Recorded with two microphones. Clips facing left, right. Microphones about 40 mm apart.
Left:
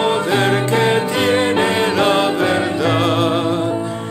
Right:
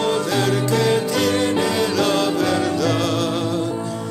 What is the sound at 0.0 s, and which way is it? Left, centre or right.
Music, left.